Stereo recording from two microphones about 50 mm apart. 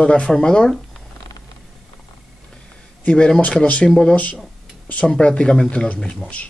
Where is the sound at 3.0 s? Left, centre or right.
Centre.